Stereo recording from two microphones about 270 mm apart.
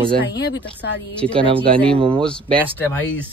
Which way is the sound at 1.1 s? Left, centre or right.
Centre.